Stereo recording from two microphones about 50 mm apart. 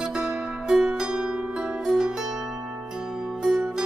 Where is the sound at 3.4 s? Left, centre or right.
Centre.